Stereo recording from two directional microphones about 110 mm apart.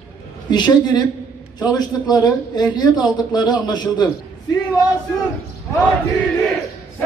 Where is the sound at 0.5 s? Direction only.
40° left (ahead or behind).